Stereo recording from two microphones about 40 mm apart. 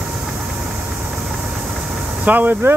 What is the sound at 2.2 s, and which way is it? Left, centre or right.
Speech, right.